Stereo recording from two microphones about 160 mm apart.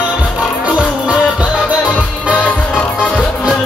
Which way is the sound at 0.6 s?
10° right (ahead or behind).